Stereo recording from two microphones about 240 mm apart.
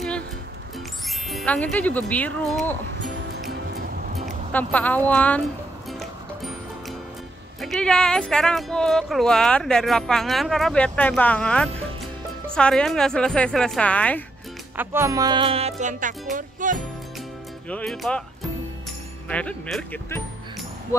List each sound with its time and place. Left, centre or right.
1.3 s speech: centre
4.5 s speech: centre
5.9 s music: centre
7.6 s speech: centre
14.8 s music: centre; by 16.8 s right
17.6 s speech: centre
19.2 s speech: centre